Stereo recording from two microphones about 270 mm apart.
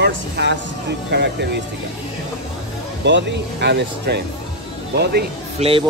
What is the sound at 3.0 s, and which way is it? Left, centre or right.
Speech, right.